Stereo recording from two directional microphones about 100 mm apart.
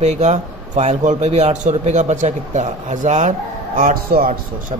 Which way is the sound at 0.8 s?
90° right.